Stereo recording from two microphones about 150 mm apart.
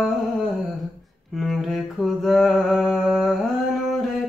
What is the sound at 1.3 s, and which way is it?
Mantra, centre (ahead or behind).